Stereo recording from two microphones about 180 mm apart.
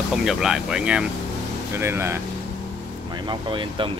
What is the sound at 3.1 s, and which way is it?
Speech, 25° right (ahead or behind).